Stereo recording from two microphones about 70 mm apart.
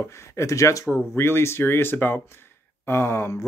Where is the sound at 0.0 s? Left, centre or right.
Left.